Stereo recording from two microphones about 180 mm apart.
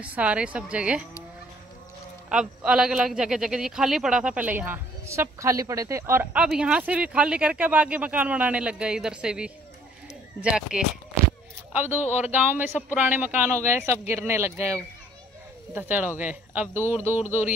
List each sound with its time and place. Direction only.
0.0 s a woman's voice: 5° right (ahead or behind)
2.2 s a man's voice: 5° right (ahead or behind)
12.0 s speech: 40° left (ahead or behind)
12.3 s a woman's voice: 10° right (ahead or behind)
17.2 s speech: 40° left (ahead or behind)